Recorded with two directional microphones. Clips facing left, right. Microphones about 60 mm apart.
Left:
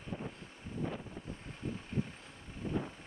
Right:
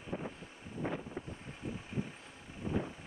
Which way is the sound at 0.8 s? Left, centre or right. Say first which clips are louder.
Right 3 dB; right.